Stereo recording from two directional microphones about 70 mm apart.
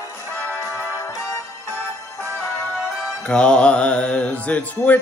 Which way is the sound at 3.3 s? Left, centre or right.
Centre.